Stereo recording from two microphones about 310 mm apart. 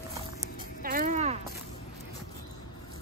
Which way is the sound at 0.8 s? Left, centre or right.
Right.